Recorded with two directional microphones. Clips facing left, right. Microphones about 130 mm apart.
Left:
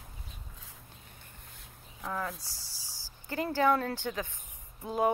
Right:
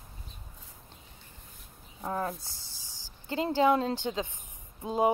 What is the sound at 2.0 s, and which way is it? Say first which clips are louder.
Speech: right 3 dB; 30° right (ahead or behind).